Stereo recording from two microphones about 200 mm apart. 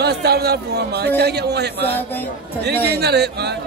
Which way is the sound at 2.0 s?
10° left (ahead or behind).